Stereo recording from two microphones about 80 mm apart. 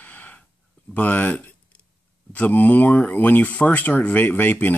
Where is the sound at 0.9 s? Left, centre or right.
Left.